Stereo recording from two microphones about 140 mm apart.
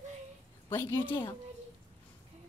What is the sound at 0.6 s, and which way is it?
Speech, 20° left (ahead or behind).